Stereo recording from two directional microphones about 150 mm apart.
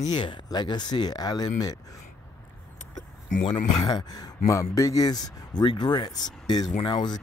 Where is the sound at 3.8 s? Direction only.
30° left (ahead or behind).